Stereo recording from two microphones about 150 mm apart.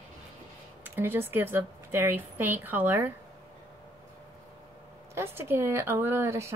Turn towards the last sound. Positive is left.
turn(degrees=-20)  # may be behind; listen again after turning